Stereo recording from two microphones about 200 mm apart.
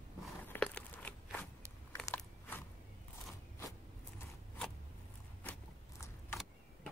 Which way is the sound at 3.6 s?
15° left (ahead or behind).